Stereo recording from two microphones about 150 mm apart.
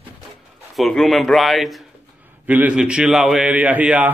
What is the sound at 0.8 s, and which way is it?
Speech, centre (ahead or behind).